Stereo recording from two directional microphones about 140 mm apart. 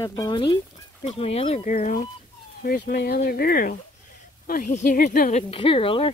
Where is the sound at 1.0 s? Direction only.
50° left (ahead or behind); by 2.1 s 65° left (ahead or behind).